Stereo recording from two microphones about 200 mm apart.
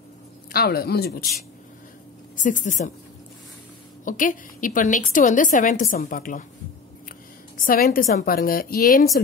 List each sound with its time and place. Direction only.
0.5 s a woman's voice: 50° left (ahead or behind)
4.0 s a woman's voice: 40° left (ahead or behind)
7.6 s a woman's voice: 45° left (ahead or behind)